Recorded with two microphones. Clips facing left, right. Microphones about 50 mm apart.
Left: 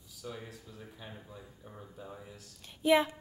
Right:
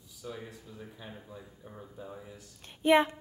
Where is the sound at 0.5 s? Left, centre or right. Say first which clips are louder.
Right 2 dB; centre.